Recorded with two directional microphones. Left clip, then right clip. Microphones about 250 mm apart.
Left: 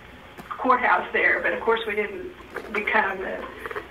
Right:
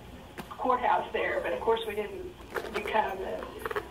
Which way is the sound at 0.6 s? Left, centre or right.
Left.